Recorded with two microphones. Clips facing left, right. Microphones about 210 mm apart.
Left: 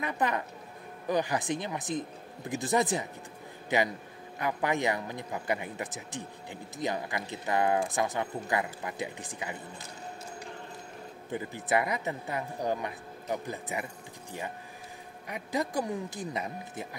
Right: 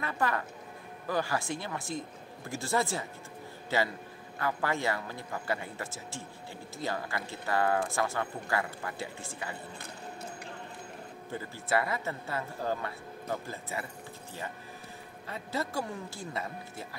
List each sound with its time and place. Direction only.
0.0 s a woman's voice: 20° left (ahead or behind)
11.3 s speech: 20° left (ahead or behind)
15.2 s speech: 15° left (ahead or behind)